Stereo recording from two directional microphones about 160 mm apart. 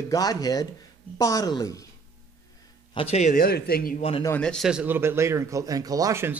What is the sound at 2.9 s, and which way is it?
Speech, 40° left (ahead or behind).